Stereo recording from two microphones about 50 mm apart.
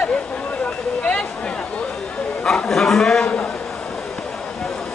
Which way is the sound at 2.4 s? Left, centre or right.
Centre.